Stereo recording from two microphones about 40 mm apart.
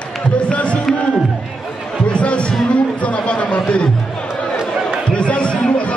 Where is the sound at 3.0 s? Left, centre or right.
Left.